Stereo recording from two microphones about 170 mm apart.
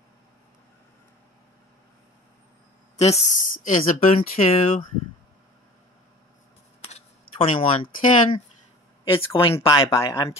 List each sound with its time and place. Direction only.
3.0 s speech: 40° left (ahead or behind)
6.9 s speech: 35° left (ahead or behind)
9.6 s speech: 20° left (ahead or behind)